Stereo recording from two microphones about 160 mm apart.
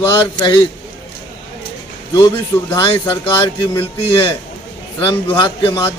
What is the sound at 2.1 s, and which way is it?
A man's voice, 25° left (ahead or behind).